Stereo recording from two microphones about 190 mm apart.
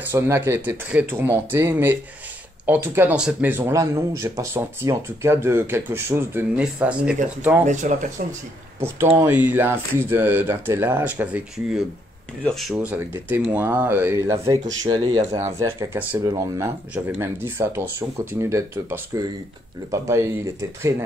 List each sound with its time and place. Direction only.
0.1 s speech: 10° right (ahead or behind)
7.6 s speech: 40° right (ahead or behind)
8.8 s speech: 10° right (ahead or behind)
12.7 s speech: 10° right (ahead or behind)